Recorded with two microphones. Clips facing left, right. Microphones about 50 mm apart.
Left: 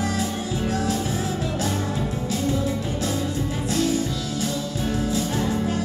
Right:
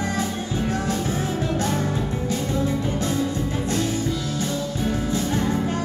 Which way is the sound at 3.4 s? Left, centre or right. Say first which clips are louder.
Right 1 dB; centre.